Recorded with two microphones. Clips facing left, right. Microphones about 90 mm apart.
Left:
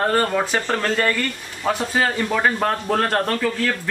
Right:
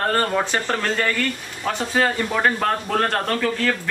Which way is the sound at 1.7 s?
5° left (ahead or behind).